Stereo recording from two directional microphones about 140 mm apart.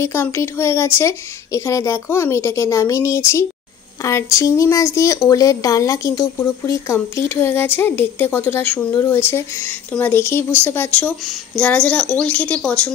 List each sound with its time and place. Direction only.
0.0 s a woman's voice: 20° left (ahead or behind)